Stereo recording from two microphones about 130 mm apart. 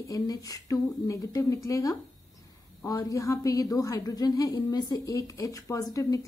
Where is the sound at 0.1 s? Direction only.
30° left (ahead or behind).